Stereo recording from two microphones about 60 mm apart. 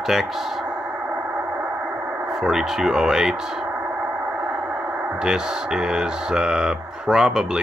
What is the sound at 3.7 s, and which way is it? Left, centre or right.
Radio, right.